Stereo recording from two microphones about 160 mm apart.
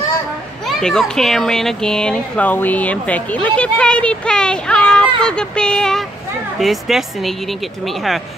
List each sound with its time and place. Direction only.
0.7 s speech: centre (ahead or behind)